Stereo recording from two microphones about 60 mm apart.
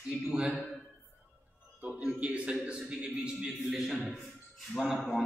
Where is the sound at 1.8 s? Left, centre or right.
Centre.